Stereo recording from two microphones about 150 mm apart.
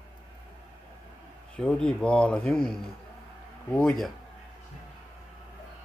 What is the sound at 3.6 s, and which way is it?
Speech, 5° left (ahead or behind).